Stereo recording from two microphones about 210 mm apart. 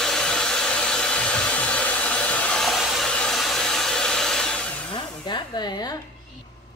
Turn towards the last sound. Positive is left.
turn(degrees=20)  # may be behind; listen again after turning